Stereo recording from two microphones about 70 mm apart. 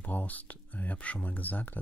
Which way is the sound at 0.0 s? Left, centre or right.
Left.